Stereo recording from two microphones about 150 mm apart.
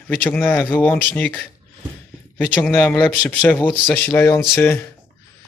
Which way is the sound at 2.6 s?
10° left (ahead or behind).